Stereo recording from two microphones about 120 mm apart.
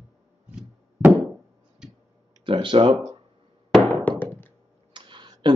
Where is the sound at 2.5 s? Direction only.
45° right (ahead or behind).